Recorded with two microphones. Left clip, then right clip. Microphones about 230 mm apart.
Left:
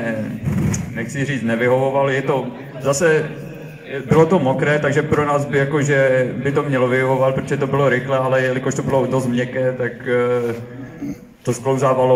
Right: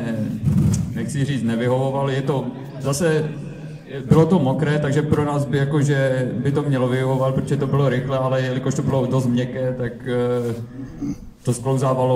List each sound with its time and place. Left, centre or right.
0.7 s a man's voice: right
11.4 s a man's voice: right